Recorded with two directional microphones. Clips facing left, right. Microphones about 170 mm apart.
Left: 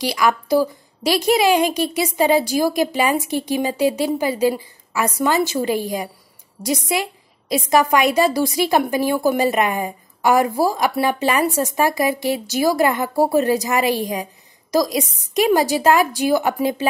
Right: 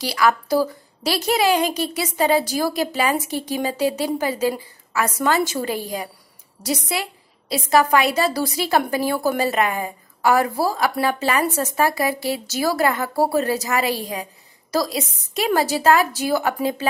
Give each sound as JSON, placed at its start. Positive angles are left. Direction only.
{"t": 0.0, "sound": "a woman's voice", "side_deg": 15}